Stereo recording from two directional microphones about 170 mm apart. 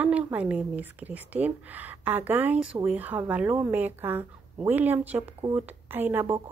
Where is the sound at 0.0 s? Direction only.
10° right (ahead or behind).